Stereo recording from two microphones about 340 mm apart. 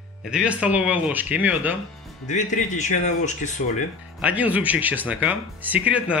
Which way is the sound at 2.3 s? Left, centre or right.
Left.